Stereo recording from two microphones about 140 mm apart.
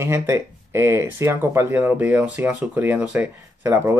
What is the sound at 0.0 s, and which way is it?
Speech, 20° right (ahead or behind).